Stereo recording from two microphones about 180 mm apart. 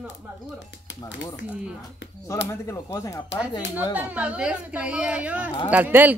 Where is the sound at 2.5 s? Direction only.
15° left (ahead or behind).